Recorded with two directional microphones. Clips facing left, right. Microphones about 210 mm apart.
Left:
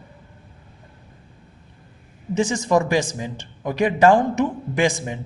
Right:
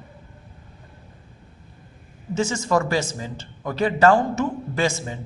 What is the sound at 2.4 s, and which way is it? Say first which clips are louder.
A man's voice: left 3 dB; 15° left (ahead or behind).